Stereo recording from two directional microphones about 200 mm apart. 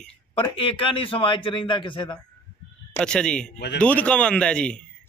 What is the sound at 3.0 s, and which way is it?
A man's voice, 5° left (ahead or behind).